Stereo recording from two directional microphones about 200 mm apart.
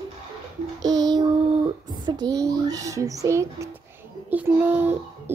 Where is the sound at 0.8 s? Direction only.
20° right (ahead or behind).